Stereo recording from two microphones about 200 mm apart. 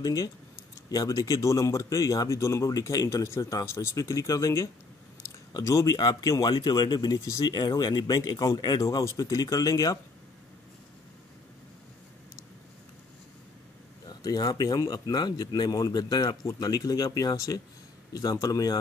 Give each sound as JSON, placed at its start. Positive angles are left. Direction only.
{"t": 0.0, "sound": "speech", "side_deg": 15}
{"t": 14.0, "sound": "speech", "side_deg": 20}